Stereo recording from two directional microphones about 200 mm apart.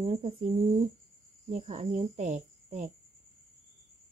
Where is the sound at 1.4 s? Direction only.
35° right (ahead or behind).